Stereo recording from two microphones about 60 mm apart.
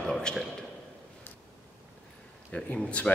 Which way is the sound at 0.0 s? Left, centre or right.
Centre.